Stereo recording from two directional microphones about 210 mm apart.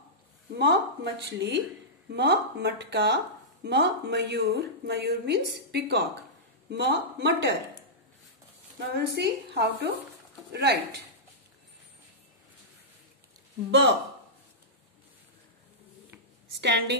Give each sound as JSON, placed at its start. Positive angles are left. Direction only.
{"t": 0.6, "sound": "a woman's voice", "side_deg": -55}
{"t": 8.7, "sound": "a woman's voice", "side_deg": -55}
{"t": 16.5, "sound": "a woman's voice", "side_deg": -55}